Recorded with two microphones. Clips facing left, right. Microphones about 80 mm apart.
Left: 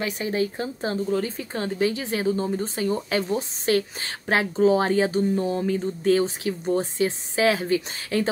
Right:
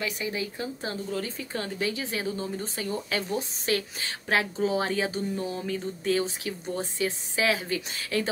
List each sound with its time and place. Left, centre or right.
0.0 s speech: left